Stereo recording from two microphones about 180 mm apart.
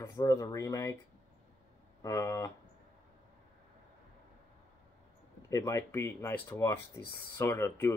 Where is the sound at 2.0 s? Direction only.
20° left (ahead or behind).